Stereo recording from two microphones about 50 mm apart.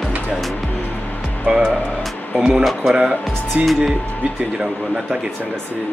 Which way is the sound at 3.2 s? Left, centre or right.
Centre.